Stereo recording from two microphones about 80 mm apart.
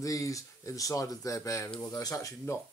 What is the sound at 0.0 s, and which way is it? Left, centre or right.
Speech, left.